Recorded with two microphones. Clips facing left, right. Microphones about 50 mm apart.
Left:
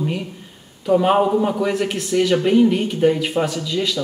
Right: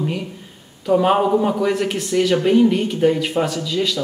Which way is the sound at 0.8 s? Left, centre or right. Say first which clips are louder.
Even; centre.